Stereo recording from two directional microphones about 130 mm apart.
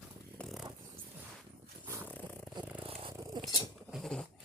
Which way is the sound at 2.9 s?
40° right (ahead or behind).